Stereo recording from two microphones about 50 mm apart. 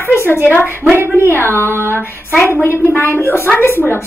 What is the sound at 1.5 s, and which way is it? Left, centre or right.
A man's voice, left.